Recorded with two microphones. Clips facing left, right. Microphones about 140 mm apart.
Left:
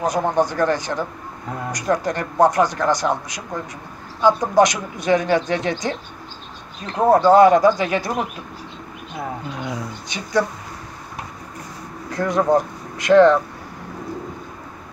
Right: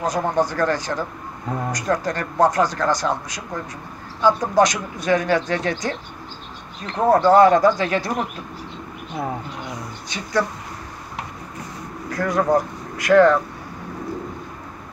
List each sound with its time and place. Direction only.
0.0 s speech: 20° left (ahead or behind)
7.0 s speech: 15° left (ahead or behind)
10.0 s speech: 15° left (ahead or behind)
12.1 s speech: 20° left (ahead or behind)